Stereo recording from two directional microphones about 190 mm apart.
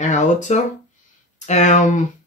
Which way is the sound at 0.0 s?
40° left (ahead or behind).